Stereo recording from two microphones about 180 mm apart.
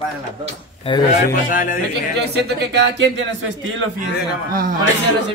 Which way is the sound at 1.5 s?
50° left (ahead or behind).